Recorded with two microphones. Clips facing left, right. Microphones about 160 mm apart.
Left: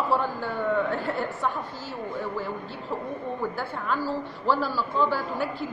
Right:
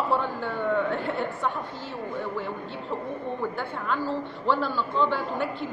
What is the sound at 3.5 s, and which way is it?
A woman's voice, 5° left (ahead or behind).